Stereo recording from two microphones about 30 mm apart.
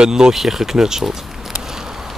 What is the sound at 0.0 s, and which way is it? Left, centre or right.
Speech, right.